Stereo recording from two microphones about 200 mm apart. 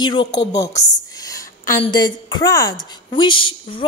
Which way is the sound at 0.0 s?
25° left (ahead or behind).